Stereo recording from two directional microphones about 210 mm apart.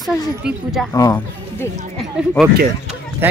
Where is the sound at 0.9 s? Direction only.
15° left (ahead or behind).